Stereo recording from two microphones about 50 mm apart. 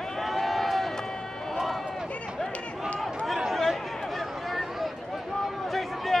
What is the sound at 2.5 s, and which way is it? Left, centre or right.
Run, left.